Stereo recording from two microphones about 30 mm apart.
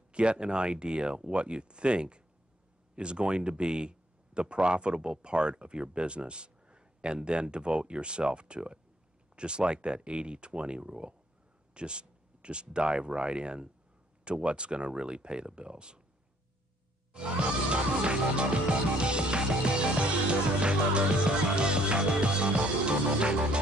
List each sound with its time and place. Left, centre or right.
0.1 s speech: right
17.1 s speech: right
21.5 s music: right